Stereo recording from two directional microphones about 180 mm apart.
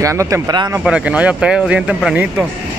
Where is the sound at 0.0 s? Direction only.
15° right (ahead or behind).